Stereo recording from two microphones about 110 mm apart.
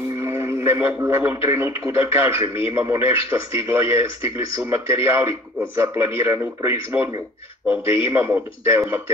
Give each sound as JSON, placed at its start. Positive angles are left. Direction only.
{"t": 0.2, "sound": "a man's voice", "side_deg": -25}